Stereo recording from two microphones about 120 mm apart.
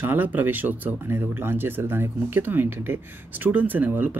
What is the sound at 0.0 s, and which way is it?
Speech, 15° right (ahead or behind).